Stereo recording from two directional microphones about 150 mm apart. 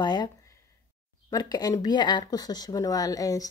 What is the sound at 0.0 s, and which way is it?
Speech, 25° left (ahead or behind).